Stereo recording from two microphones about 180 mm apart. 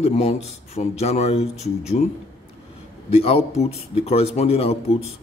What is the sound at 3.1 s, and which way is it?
A man's voice, 30° left (ahead or behind).